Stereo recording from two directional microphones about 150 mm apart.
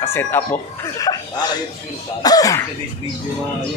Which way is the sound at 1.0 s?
25° left (ahead or behind).